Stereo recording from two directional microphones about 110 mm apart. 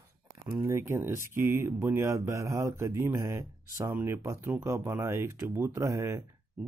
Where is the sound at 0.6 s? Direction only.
25° right (ahead or behind).